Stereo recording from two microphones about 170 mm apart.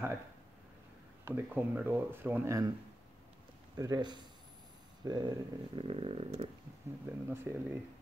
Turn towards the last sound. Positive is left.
turn(degrees=-15)  # may be behind; listen again after turning